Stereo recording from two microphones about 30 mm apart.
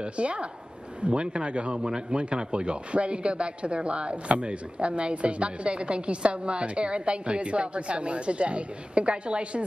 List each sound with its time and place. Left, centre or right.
0.0 s speech: right